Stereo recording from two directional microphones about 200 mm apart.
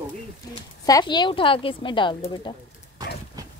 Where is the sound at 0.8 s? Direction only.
20° left (ahead or behind).